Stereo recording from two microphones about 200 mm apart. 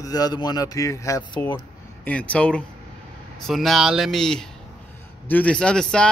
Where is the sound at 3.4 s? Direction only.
Centre (ahead or behind).